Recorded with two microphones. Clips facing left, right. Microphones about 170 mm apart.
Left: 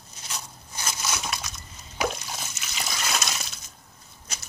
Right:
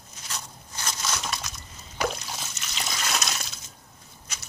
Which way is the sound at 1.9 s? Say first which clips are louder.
Even; centre (ahead or behind).